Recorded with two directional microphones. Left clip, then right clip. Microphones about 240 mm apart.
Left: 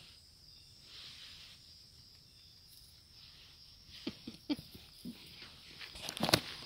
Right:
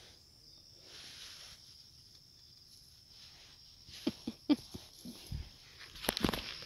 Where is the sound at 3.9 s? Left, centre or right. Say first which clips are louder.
Right 6 dB; right.